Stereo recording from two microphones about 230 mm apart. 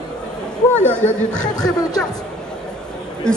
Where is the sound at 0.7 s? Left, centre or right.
Left.